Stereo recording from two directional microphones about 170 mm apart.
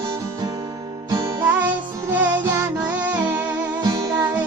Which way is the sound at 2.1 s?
10° right (ahead or behind).